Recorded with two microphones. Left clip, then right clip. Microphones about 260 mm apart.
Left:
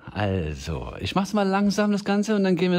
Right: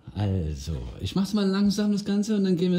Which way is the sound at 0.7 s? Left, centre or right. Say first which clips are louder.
Left 8 dB; left.